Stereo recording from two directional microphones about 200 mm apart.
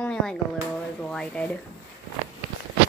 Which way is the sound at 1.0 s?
5° left (ahead or behind).